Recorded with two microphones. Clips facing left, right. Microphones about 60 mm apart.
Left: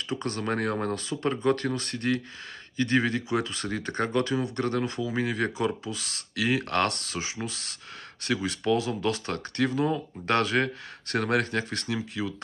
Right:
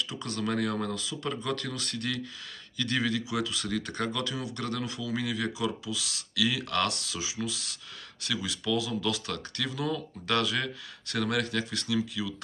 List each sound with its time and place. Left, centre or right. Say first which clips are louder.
0.1 s speech: left 6 dB; left